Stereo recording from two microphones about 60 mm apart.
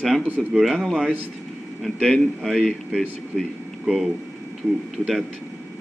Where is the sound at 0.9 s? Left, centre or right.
Centre.